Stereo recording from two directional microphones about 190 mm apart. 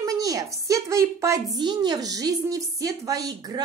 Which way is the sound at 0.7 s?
15° right (ahead or behind).